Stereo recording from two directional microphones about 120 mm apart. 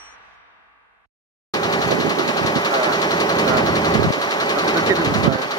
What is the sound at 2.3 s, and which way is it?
Vehicle, 35° left (ahead or behind).